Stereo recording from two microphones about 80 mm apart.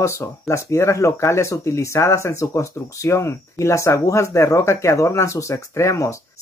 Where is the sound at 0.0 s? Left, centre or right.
Left.